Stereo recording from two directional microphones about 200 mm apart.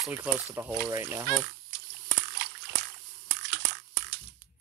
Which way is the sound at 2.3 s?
60° right (ahead or behind).